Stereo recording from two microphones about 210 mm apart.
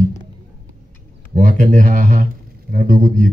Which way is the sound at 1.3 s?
35° right (ahead or behind).